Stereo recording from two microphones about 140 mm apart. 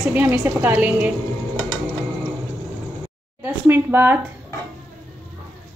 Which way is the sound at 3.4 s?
15° right (ahead or behind).